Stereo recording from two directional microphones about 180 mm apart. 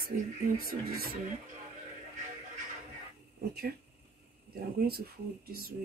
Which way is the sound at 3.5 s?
60° right (ahead or behind).